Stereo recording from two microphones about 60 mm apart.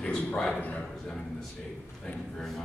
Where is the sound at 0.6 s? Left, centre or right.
Left.